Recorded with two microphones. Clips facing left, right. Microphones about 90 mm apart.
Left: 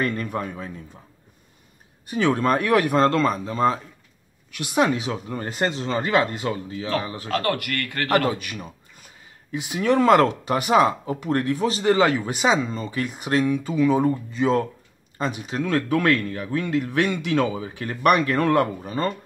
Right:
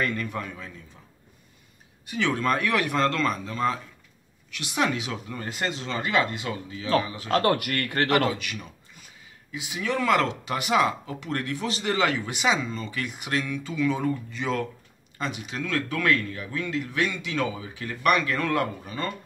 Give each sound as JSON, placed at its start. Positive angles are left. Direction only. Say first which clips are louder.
{"t": 0.0, "sound": "speech", "louder": "left 3 dB", "side_deg": 35}
{"t": 2.0, "sound": "speech", "louder": "left 5 dB", "side_deg": 40}
{"t": 7.2, "sound": "a man's voice", "louder": "right 2 dB", "side_deg": -25}
{"t": 8.3, "sound": "speech", "louder": "left 3 dB", "side_deg": 35}